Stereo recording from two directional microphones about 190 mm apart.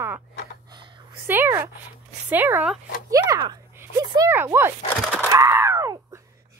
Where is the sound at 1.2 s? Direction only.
10° right (ahead or behind).